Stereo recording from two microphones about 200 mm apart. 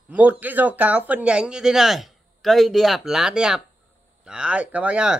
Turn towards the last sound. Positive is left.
turn(degrees=-5)  # may be behind; listen again after turning